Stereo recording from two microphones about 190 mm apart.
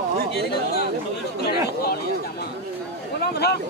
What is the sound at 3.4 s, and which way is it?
Speech, 60° left (ahead or behind).